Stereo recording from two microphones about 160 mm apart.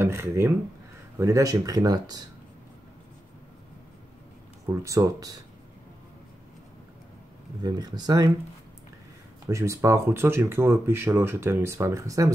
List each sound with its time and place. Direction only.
0.0 s speech: 15° right (ahead or behind)
4.8 s speech: 20° right (ahead or behind)
7.6 s speech: 25° right (ahead or behind)
9.5 s speech: 15° right (ahead or behind)